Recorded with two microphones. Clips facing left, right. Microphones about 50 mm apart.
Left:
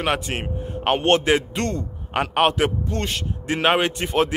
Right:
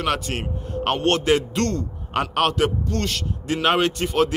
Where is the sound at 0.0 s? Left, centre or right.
Left.